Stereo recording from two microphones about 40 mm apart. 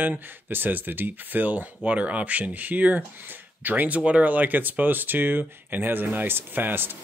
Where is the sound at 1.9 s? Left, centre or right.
Right.